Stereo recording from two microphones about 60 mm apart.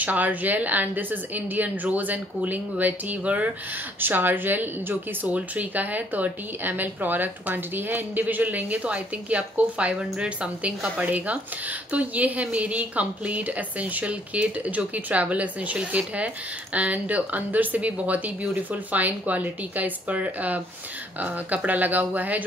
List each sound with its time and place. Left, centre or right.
0.0 s speech: right
21.6 s speech: right